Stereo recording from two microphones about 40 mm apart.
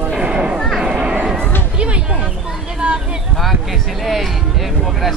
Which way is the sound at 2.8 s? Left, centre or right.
Right.